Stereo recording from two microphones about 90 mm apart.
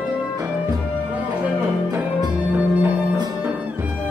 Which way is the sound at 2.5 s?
15° right (ahead or behind).